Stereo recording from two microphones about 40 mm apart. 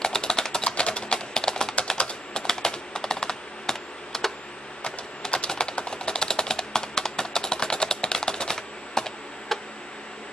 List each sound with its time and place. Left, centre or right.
0.0 s typing: centre
2.0 s typing: left
2.4 s typing: centre
5.5 s a sound: left